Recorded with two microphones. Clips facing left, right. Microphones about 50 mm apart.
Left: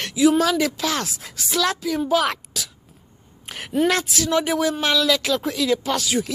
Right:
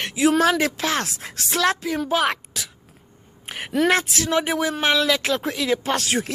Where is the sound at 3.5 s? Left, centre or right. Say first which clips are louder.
Right 2 dB; centre.